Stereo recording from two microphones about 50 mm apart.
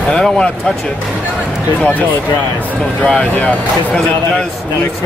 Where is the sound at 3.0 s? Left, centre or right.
Centre.